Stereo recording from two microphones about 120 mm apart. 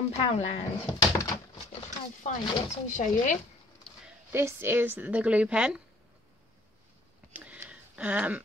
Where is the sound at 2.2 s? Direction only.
85° left.